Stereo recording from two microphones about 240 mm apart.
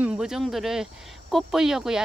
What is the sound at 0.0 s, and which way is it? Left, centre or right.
Speech, centre.